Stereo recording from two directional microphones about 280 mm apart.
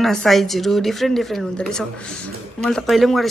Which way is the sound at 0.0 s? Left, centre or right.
Centre.